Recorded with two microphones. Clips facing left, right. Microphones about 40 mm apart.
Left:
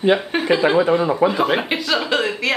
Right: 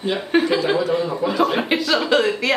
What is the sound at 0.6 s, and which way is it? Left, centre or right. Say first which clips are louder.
Speech: left 4 dB; centre.